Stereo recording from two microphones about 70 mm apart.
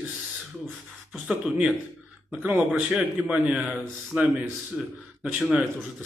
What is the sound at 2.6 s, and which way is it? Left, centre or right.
Speech, centre.